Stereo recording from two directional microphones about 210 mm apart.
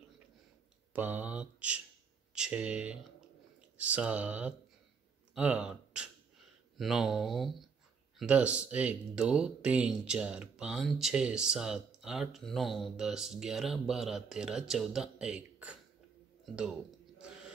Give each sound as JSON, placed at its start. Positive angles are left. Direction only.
{"t": 0.9, "sound": "speech", "side_deg": -10}